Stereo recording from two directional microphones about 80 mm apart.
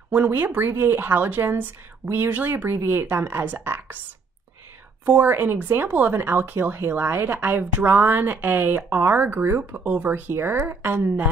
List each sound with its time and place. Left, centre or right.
0.1 s speech: right
5.0 s speech: right